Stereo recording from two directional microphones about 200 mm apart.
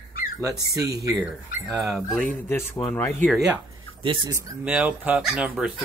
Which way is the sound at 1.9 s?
10° left (ahead or behind).